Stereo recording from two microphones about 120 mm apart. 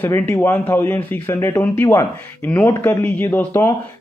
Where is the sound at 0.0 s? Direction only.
20° left (ahead or behind).